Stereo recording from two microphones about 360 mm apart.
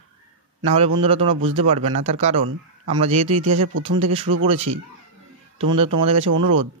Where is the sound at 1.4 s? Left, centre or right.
Right.